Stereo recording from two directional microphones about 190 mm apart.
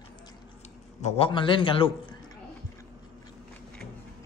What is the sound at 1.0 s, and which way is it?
A man's voice, 35° left (ahead or behind).